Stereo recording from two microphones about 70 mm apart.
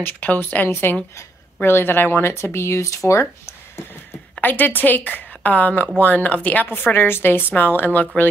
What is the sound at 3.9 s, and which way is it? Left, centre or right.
Speech, left.